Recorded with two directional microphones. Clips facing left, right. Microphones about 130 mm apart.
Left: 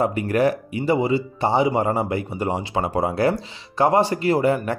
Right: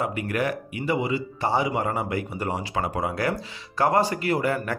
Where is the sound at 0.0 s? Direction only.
30° left (ahead or behind).